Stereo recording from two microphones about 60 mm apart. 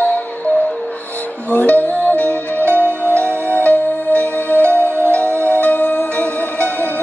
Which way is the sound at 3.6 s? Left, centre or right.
Left.